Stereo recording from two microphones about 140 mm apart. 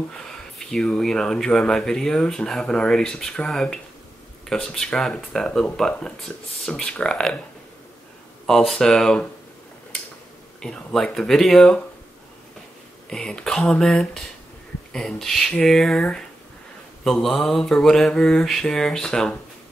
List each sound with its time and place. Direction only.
0.6 s speech: 5° left (ahead or behind)
8.5 s speech: 5° left (ahead or behind)
10.6 s speech: 5° left (ahead or behind)
13.1 s speech: 5° left (ahead or behind)